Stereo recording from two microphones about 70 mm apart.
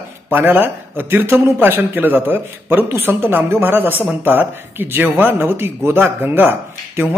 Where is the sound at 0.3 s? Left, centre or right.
Right.